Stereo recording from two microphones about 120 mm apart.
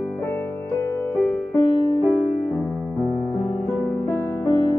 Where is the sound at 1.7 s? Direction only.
45° left (ahead or behind).